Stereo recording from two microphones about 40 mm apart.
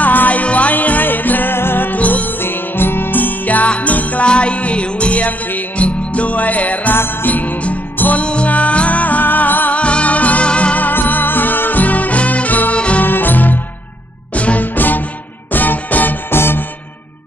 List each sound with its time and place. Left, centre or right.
0.0 s music: left
2.0 s music: left
2.2 s music: left
4.3 s music: left
7.0 s music: left
7.2 s music: left
8.2 s music: left
9.8 s music: left
10.8 s music: left
12.7 s music: left
13.0 s music: left
14.3 s music: left
14.8 s music: left
16.3 s music: left